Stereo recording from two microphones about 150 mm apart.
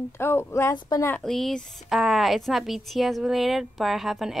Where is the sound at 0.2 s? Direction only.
15° left (ahead or behind).